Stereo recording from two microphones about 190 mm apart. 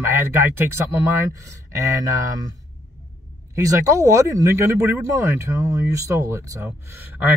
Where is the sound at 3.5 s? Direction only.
15° right (ahead or behind).